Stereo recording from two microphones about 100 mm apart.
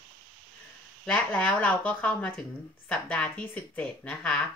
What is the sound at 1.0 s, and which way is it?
A woman's voice, 15° left (ahead or behind).